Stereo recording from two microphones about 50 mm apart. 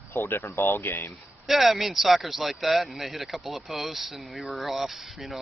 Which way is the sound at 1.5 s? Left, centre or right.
Centre.